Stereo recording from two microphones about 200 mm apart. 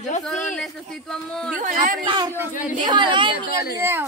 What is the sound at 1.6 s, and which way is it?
Speech, 40° right (ahead or behind).